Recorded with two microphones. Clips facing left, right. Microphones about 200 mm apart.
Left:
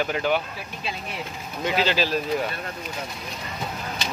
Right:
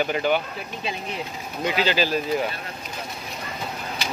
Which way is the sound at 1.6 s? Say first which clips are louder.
Right 1 dB; centre (ahead or behind).